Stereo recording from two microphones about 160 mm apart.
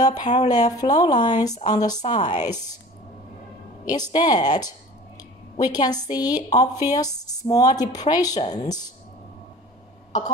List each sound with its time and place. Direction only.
0.0 s speech: 25° left (ahead or behind)
3.9 s speech: 25° left (ahead or behind)